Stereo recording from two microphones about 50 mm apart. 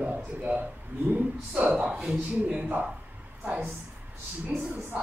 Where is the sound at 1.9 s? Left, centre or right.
Centre.